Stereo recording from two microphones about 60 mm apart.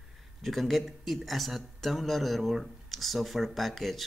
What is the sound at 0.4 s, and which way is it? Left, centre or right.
Speech, centre.